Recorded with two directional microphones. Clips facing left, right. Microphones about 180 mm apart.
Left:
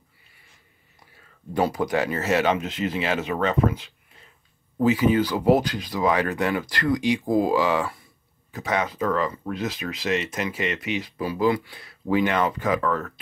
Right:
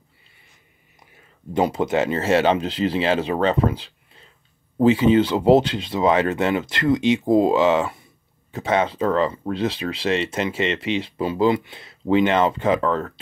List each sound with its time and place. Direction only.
1.1 s speech: 20° right (ahead or behind)